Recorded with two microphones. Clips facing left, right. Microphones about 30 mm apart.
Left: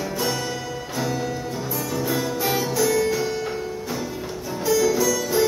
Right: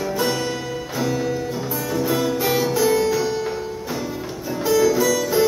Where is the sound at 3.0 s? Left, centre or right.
Centre.